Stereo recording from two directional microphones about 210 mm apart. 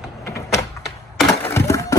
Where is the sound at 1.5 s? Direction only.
15° left (ahead or behind).